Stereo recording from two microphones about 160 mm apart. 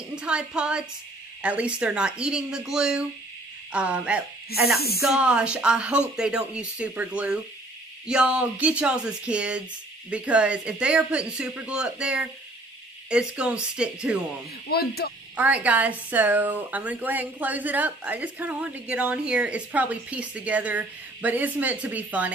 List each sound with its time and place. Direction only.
0.1 s a woman's voice: 5° right (ahead or behind)
4.7 s speech: 75° left (ahead or behind)
5.0 s a woman's voice: 5° right (ahead or behind)
14.7 s speech: 75° left (ahead or behind)
15.3 s a woman's voice: 10° right (ahead or behind)